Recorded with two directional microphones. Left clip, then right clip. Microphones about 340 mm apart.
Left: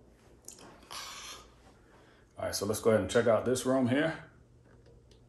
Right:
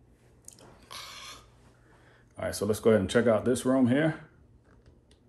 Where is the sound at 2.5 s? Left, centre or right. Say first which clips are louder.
Right 3 dB; right.